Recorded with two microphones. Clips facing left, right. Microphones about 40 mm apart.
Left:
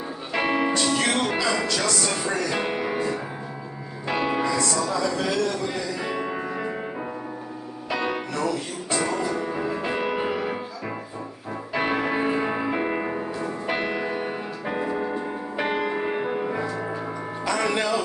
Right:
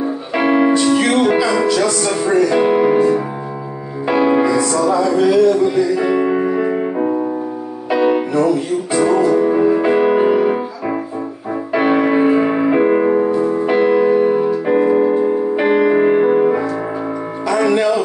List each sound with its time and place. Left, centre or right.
0.3 s music: centre
4.1 s music: centre
11.7 s music: centre
13.7 s music: centre
14.7 s music: right
15.2 s music: centre
17.5 s music: centre